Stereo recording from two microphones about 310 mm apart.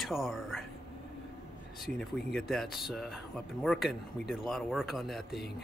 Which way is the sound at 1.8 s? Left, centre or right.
Centre.